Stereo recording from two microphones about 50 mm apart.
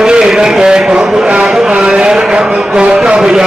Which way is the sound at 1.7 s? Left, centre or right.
Centre.